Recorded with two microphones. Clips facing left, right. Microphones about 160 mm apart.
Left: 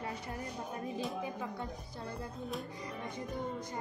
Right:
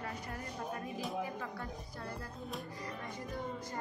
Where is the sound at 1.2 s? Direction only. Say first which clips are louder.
Left 2 dB; 20° left (ahead or behind).